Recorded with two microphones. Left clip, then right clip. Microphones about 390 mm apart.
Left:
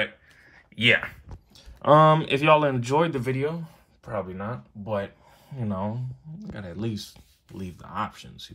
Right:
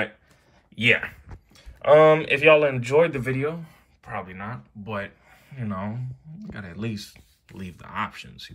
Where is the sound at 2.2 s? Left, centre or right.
Right.